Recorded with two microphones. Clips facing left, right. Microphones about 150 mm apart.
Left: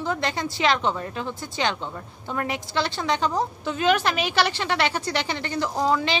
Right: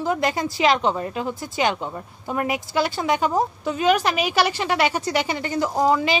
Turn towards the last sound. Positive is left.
turn(degrees=-5)  # may be behind; listen again after turning